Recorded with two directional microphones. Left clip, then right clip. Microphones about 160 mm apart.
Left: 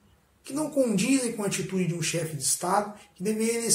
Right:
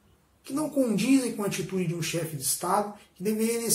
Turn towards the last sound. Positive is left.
turn(degrees=0)  # may be behind; listen again after turning